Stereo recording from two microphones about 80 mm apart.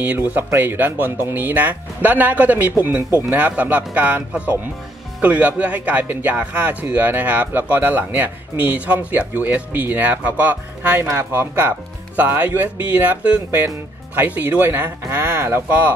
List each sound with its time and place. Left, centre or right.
0.0 s speech: right